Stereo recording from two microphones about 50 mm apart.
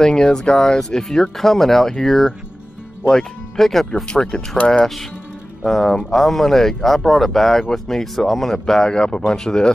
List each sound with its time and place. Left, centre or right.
0.0 s speech: centre
3.9 s speech: centre
5.6 s speech: centre